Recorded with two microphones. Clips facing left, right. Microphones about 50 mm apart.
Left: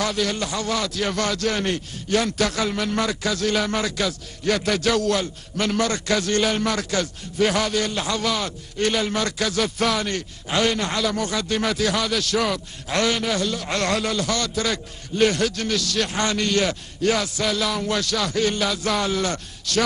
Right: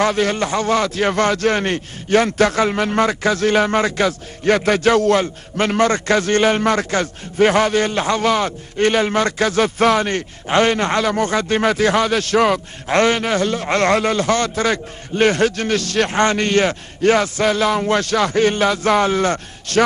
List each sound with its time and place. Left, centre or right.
0.0 s a man's voice: right